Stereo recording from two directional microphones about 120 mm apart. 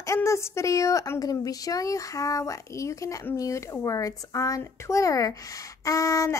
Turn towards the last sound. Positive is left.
turn(degrees=25)  # may be behind; listen again after turning